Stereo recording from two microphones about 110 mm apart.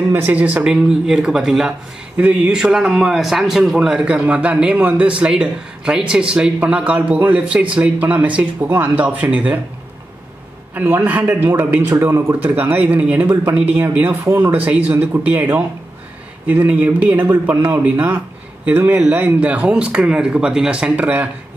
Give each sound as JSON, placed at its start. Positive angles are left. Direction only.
{"t": 0.1, "sound": "a man's voice", "side_deg": -15}
{"t": 10.7, "sound": "a man's voice", "side_deg": -15}
{"t": 14.2, "sound": "speech", "side_deg": -30}
{"t": 14.5, "sound": "a man's voice", "side_deg": -15}